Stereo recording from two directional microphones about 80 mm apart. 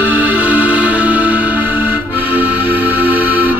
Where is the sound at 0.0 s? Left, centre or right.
Right.